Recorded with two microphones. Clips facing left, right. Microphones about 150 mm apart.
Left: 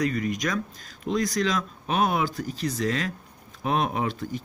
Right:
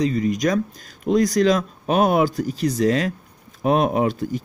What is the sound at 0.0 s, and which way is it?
Speech, 30° right (ahead or behind).